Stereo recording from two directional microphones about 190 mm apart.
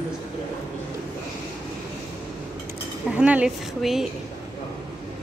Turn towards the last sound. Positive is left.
turn(degrees=0)  # may be behind; listen again after turning